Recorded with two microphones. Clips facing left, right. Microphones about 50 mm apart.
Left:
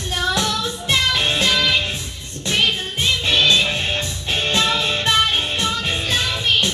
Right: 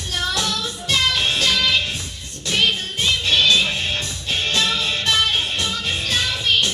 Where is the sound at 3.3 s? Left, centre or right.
Centre.